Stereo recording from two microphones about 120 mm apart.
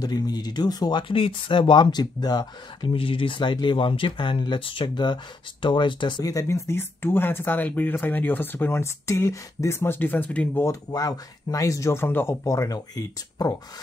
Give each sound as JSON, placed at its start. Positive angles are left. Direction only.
{"t": 0.0, "sound": "speech", "side_deg": 35}
{"t": 3.0, "sound": "speech", "side_deg": 50}
{"t": 10.6, "sound": "speech", "side_deg": 30}
{"t": 12.4, "sound": "speech", "side_deg": 30}